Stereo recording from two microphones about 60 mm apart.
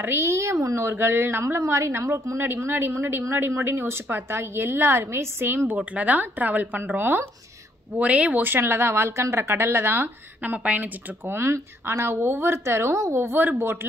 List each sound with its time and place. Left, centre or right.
0.0 s speech: right
0.3 s speech: right
0.8 s speech: right
1.6 s a woman's voice: right
5.7 s speech: right
8.4 s a woman's voice: right
10.4 s speech: right
11.2 s a woman's voice: right
13.4 s speech: right